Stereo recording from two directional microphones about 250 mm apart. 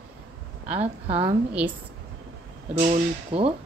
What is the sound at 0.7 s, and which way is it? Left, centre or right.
Speech, right.